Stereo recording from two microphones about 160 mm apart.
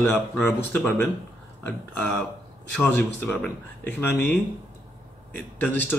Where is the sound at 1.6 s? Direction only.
10° left (ahead or behind).